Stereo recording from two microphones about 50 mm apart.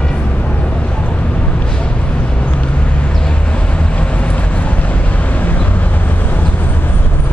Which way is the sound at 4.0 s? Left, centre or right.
Left.